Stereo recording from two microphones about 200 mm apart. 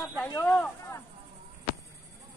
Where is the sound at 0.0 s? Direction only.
5° left (ahead or behind).